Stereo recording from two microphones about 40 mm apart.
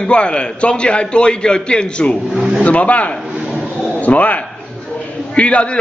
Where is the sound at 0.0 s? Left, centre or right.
Left.